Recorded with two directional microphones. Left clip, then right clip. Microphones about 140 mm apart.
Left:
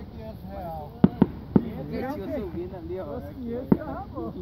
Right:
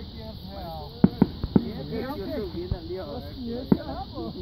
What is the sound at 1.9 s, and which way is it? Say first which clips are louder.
Speech: left 1 dB; 65° left (ahead or behind).